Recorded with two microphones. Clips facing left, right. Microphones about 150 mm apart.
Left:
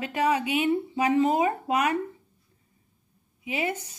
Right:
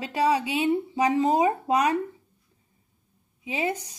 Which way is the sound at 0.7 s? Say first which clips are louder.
Right 3 dB; 15° right (ahead or behind).